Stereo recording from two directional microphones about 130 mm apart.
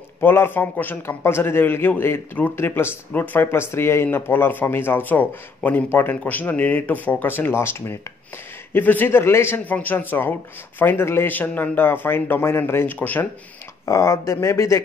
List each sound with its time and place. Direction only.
0.2 s speech: 15° left (ahead or behind)